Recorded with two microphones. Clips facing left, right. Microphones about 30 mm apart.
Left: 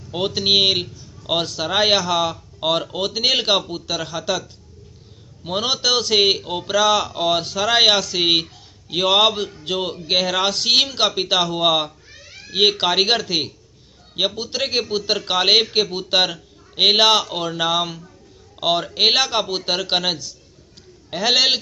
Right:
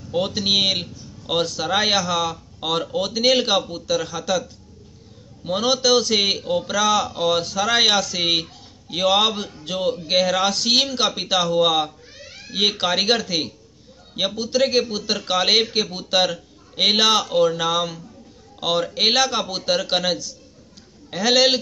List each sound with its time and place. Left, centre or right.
0.1 s a man's voice: left
2.0 s speech: left
5.6 s speech: left
7.6 s a man's voice: centre